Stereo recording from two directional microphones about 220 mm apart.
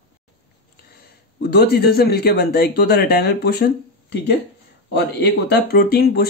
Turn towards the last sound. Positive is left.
turn(degrees=45)  # may be behind; listen again after turning